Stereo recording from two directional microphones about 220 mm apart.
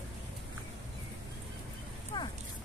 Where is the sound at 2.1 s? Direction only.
20° left (ahead or behind).